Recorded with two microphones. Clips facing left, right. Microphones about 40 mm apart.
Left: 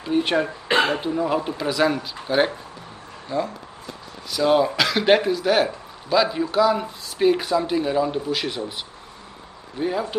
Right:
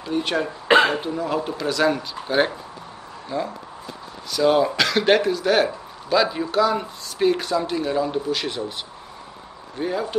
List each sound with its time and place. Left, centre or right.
0.0 s speech: centre
9.8 s speech: centre